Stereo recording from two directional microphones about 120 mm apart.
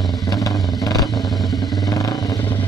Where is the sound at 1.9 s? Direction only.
30° left (ahead or behind).